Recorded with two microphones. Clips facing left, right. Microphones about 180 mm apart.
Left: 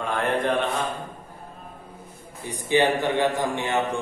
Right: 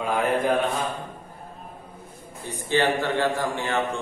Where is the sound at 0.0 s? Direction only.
10° right (ahead or behind).